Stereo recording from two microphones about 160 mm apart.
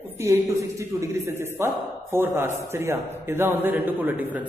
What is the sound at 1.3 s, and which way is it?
Speech, 15° right (ahead or behind).